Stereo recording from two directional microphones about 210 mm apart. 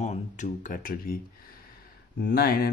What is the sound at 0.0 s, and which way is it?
Speech, 35° left (ahead or behind).